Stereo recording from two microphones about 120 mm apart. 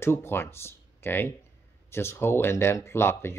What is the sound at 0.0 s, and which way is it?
Speech, 20° left (ahead or behind).